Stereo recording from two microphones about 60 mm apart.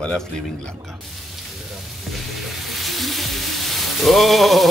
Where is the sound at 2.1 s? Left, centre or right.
Centre.